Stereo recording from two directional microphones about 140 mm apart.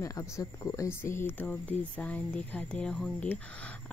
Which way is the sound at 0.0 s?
20° left (ahead or behind).